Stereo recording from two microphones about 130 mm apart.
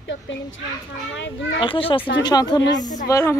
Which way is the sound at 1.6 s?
45° left (ahead or behind).